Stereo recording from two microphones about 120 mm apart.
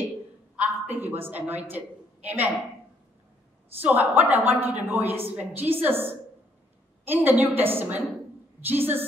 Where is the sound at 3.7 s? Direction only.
15° right (ahead or behind).